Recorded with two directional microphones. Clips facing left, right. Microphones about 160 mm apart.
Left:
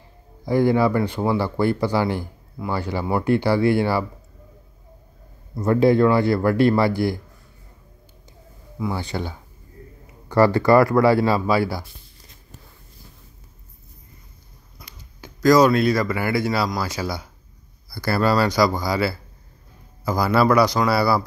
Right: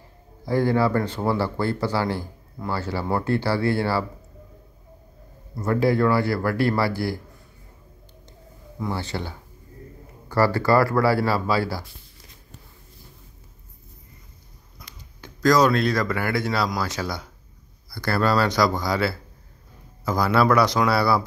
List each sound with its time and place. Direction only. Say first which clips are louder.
0.5 s speech: left 3 dB; 15° left (ahead or behind)
5.6 s speech: left 4 dB; 20° left (ahead or behind)
8.3 s a sound: right 1 dB; 5° left (ahead or behind)
10.3 s speech: left 4 dB; 20° left (ahead or behind)
14.8 s speech: left 2 dB; 10° left (ahead or behind)